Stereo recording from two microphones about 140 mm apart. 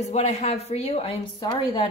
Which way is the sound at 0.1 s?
55° left (ahead or behind).